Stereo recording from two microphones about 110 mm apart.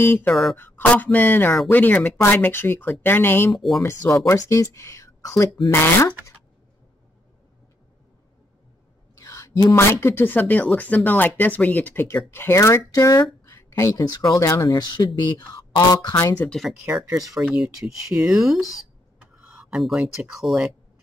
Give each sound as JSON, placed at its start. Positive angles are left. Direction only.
{"t": 0.0, "sound": "speech", "side_deg": 15}
{"t": 0.3, "sound": "speech", "side_deg": 0}
{"t": 0.6, "sound": "speech", "side_deg": 15}
{"t": 3.5, "sound": "speech", "side_deg": 0}
{"t": 3.8, "sound": "speech", "side_deg": 30}
{"t": 9.2, "sound": "a sound", "side_deg": 30}
{"t": 9.9, "sound": "speech", "side_deg": 20}
{"t": 16.3, "sound": "speech", "side_deg": 5}
{"t": 17.1, "sound": "speech", "side_deg": -30}
{"t": 17.4, "sound": "speech", "side_deg": -5}